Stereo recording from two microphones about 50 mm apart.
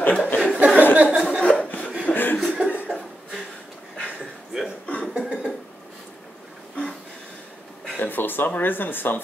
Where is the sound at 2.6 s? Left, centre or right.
Right.